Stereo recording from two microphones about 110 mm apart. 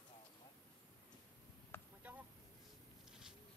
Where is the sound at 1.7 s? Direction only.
20° left (ahead or behind).